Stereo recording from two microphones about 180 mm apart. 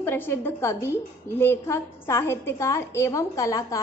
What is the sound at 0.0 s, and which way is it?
A woman's voice, 10° left (ahead or behind).